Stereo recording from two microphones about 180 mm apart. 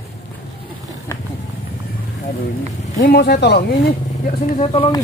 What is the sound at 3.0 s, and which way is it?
Speech, 65° left (ahead or behind).